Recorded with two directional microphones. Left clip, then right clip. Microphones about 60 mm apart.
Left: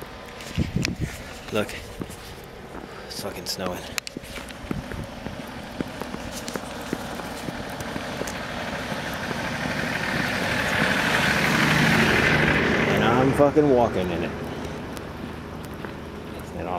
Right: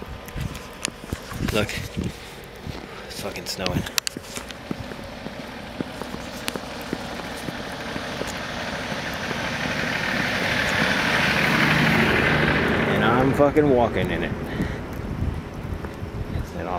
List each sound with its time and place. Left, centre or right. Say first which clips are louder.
1.5 s speech: right 2 dB; centre
3.3 s speech: right 1 dB; centre
6.5 s a sound: even; centre
9.1 s vehicle: right 2 dB; centre; by 13.0 s left
13.0 s vehicle: right 2 dB; centre
13.4 s speech: even; centre